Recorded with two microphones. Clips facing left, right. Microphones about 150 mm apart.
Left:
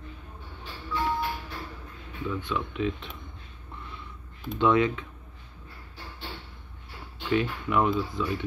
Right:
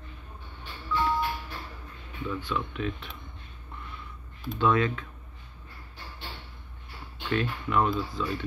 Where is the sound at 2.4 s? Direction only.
20° left (ahead or behind).